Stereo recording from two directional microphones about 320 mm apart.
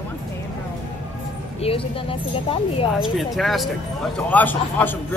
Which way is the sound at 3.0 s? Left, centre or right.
Centre.